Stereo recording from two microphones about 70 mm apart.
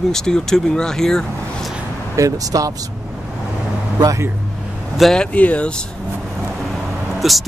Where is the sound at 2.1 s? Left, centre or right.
Right.